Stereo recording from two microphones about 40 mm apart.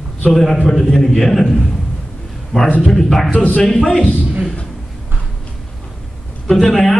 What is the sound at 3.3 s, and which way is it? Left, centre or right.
Speech, left.